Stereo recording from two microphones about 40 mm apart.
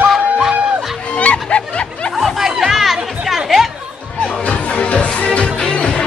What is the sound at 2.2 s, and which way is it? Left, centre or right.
Chatter, centre.